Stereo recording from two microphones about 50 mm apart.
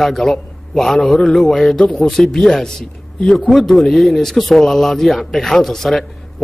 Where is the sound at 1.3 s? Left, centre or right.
Centre.